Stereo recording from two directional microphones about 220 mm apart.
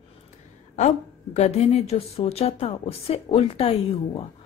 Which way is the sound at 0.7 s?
30° left (ahead or behind).